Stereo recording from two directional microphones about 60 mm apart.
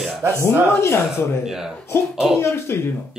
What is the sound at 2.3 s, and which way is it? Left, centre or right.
Speech, left.